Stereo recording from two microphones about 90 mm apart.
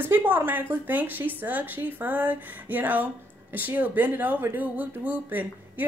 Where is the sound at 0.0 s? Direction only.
20° right (ahead or behind).